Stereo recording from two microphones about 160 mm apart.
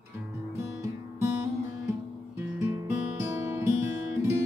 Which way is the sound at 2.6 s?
20° right (ahead or behind).